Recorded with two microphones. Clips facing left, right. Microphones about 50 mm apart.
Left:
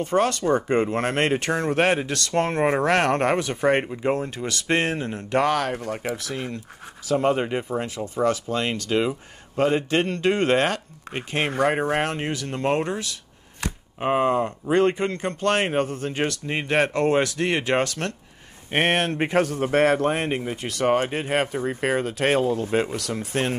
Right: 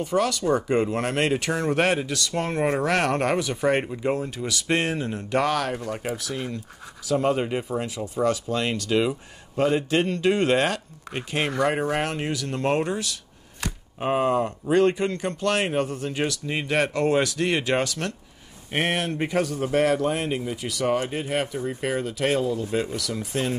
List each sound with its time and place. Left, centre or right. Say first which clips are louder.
0.0 s speech: left 2 dB; left
2.1 s speech: left 4 dB; left
2.4 s speech: left 2 dB; left
4.5 s speech: left 1 dB; left
4.7 s speech: left 2 dB; left
6.0 s speech: left 1 dB; left
7.2 s speech: left 1 dB; centre
7.8 s speech: left 1 dB; left